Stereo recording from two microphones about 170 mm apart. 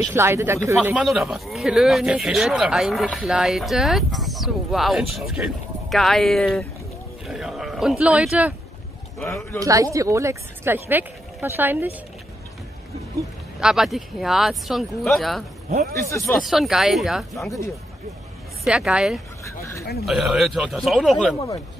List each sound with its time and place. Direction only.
0.1 s speech: 15° right (ahead or behind)
0.7 s speech: 5° right (ahead or behind)
9.6 s speech: 20° right (ahead or behind)
13.6 s speech: 5° right (ahead or behind)
15.9 s speech: 15° left (ahead or behind)
16.4 s speech: centre (ahead or behind)
18.7 s speech: 5° right (ahead or behind)
19.4 s speech: 15° left (ahead or behind)
20.1 s speech: centre (ahead or behind)